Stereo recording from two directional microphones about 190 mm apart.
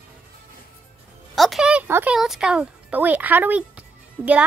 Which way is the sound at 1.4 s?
Centre (ahead or behind).